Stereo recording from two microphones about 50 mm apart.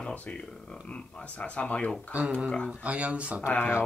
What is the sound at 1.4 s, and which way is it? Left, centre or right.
Speech, left.